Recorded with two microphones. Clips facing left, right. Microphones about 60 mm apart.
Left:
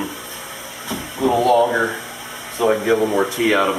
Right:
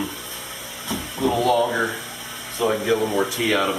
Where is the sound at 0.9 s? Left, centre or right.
Centre.